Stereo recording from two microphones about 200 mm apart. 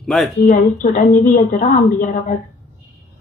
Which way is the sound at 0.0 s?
Centre (ahead or behind).